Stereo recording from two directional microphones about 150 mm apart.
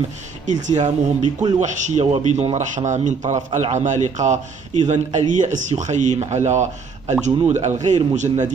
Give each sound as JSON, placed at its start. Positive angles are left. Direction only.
{"t": 0.5, "sound": "speech", "side_deg": -55}